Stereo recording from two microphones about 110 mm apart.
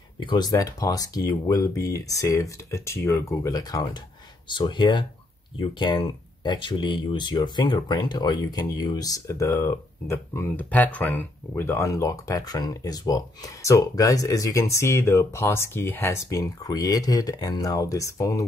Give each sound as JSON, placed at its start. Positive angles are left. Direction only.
{"t": 0.2, "sound": "speech", "side_deg": 40}
{"t": 4.5, "sound": "speech", "side_deg": 45}